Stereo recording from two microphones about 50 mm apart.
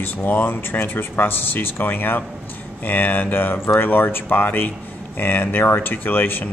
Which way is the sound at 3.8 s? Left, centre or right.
Left.